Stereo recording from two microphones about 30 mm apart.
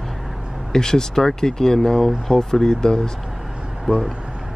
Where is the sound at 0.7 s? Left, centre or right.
Centre.